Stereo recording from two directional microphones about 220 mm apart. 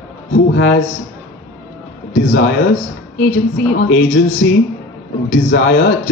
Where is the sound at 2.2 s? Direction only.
60° left (ahead or behind).